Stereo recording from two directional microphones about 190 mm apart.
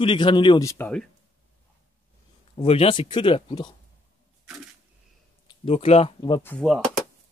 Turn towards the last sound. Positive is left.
turn(degrees=0)  # may be behind; listen again after turning